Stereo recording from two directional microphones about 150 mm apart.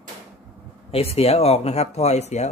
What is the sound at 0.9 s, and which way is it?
Speech, 40° left (ahead or behind).